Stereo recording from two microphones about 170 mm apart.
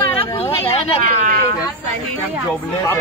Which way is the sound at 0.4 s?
35° left (ahead or behind).